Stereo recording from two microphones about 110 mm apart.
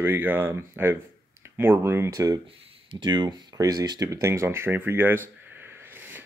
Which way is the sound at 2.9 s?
45° right (ahead or behind).